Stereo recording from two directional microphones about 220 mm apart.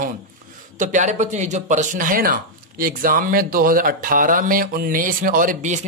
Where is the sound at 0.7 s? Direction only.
35° right (ahead or behind).